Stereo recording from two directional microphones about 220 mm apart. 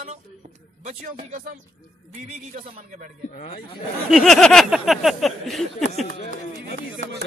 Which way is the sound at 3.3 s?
30° left (ahead or behind).